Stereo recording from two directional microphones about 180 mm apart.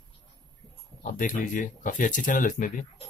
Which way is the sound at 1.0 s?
45° left (ahead or behind).